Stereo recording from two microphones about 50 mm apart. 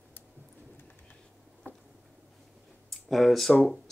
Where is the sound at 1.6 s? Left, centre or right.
Left.